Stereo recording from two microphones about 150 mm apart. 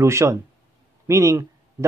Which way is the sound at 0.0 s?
20° right (ahead or behind).